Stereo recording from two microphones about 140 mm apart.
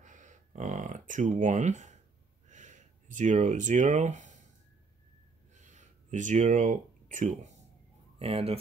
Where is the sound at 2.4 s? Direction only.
60° right (ahead or behind).